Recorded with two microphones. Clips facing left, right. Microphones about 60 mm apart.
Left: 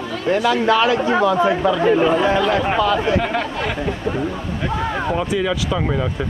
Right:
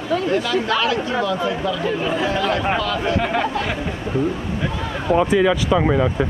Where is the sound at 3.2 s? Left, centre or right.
Centre.